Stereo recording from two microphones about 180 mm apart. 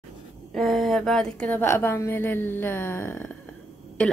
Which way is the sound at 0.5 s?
Centre (ahead or behind).